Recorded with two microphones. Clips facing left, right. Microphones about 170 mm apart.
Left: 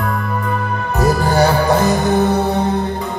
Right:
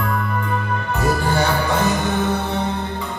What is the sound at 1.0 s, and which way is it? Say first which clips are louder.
Music: left 6 dB; 40° left (ahead or behind).